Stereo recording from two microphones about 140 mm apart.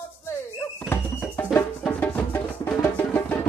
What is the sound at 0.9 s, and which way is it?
Music, 15° left (ahead or behind).